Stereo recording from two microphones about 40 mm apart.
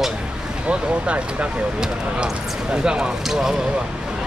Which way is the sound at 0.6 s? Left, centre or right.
Right.